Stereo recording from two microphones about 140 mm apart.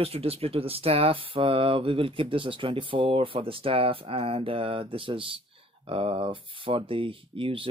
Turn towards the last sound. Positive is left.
turn(degrees=-40)  # may be behind; listen again after turning